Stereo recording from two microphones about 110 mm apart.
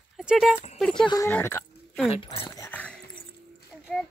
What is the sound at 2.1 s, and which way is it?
Speech, 60° left (ahead or behind).